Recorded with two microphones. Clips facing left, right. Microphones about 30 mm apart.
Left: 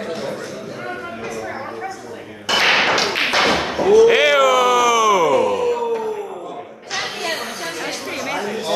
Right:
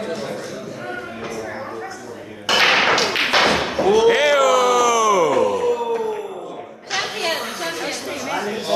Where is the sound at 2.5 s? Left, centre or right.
Centre.